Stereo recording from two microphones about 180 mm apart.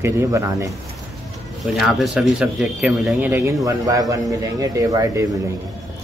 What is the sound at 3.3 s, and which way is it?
Speech, 15° right (ahead or behind).